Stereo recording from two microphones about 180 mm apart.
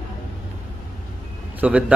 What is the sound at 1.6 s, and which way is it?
Speech, 5° right (ahead or behind).